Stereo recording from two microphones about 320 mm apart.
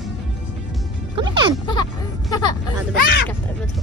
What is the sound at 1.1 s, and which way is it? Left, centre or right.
Music, centre.